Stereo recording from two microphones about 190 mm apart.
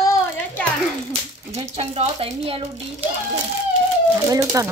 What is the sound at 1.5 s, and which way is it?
Speech, 35° right (ahead or behind).